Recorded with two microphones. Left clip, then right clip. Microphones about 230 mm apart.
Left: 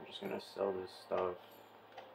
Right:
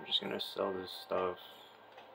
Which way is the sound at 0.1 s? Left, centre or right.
Right.